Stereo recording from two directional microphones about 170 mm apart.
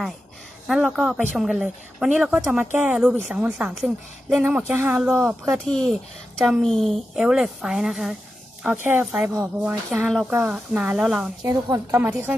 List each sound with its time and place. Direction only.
0.7 s speech: centre (ahead or behind)
11.4 s a woman's voice: 20° right (ahead or behind)